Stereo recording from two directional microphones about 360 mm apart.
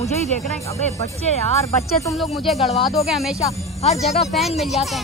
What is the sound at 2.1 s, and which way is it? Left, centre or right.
Speech, centre.